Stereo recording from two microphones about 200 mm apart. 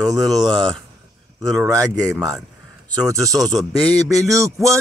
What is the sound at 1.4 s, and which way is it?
Mantra, 15° right (ahead or behind).